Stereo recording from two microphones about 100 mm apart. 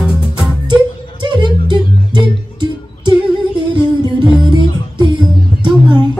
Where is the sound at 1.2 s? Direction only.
45° right (ahead or behind).